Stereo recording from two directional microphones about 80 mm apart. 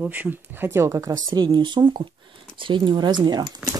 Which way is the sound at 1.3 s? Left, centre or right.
Right.